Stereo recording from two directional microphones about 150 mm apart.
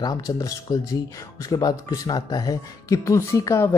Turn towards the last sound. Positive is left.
turn(degrees=20)  # may be behind; listen again after turning